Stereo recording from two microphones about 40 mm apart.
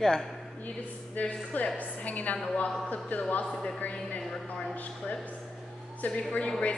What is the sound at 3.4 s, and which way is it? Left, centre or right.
Speech, centre.